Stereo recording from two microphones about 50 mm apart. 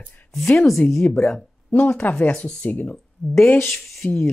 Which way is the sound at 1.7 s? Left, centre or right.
Left.